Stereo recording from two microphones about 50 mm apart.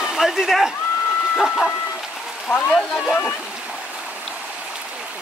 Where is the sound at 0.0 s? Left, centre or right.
Centre.